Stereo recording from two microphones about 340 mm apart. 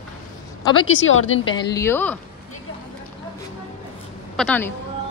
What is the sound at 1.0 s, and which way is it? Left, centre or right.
Speech, left.